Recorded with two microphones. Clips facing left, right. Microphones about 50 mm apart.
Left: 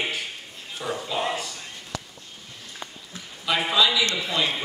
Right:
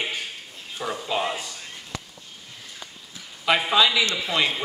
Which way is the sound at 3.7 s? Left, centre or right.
Right.